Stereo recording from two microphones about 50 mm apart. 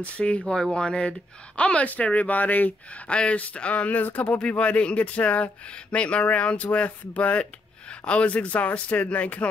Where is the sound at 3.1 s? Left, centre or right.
Left.